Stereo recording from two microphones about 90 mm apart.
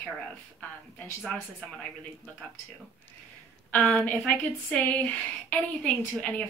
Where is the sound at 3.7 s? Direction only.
15° left (ahead or behind).